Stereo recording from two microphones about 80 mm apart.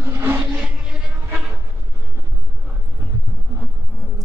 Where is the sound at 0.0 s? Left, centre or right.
Right.